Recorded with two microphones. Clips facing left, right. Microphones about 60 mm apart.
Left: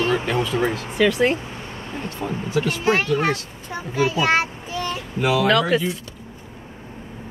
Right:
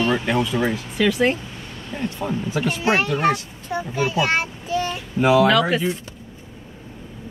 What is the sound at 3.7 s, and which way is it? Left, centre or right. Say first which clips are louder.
Child singing: left 1 dB; centre.